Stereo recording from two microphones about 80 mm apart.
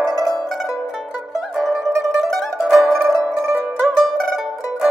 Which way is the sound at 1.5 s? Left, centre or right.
Centre.